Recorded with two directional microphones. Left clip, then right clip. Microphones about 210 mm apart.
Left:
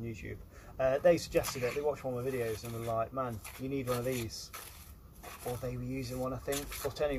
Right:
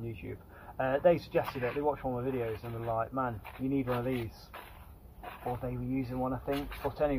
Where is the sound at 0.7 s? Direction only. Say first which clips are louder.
Even; 5° left (ahead or behind).